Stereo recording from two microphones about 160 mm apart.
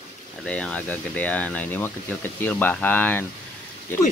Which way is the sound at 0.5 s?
5° left (ahead or behind).